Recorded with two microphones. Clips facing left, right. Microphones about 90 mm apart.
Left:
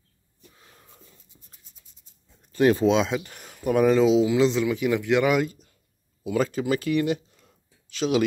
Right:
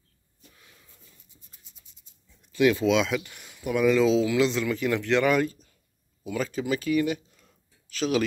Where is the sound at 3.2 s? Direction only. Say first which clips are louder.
Left 6 dB; 45° left (ahead or behind).